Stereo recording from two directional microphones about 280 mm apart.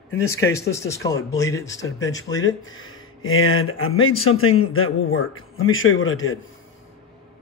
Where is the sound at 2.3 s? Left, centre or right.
Left.